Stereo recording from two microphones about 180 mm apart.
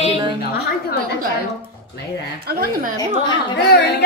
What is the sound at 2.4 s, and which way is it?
Speech, 55° right (ahead or behind).